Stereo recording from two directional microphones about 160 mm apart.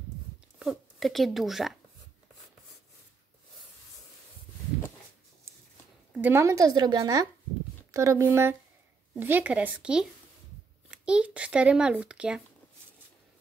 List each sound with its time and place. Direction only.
0.6 s speech: centre (ahead or behind)
6.1 s a woman's voice: 15° right (ahead or behind)